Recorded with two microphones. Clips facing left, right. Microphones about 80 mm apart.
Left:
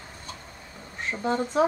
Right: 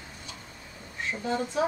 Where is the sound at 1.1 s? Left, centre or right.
Left.